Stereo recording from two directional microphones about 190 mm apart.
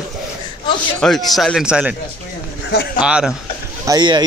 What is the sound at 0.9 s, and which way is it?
A man's voice, centre (ahead or behind).